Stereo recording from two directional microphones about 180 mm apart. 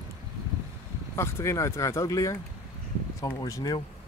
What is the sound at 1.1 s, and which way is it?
Speech, 15° left (ahead or behind).